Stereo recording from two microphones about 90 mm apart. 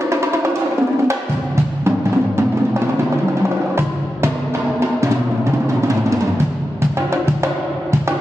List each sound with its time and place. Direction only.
0.1 s music: 30° right (ahead or behind)
1.9 s music: 30° right (ahead or behind)
5.4 s music: 35° right (ahead or behind)